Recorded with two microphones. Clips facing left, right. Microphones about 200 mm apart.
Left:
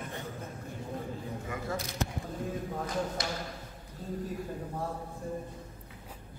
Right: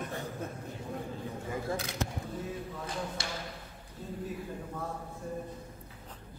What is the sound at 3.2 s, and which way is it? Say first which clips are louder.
Speech: left 4 dB; 30° right (ahead or behind).